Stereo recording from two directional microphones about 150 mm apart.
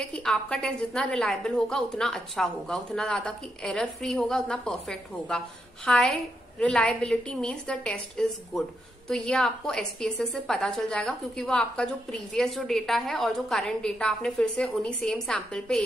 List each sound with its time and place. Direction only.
0.0 s a woman's voice: 5° left (ahead or behind)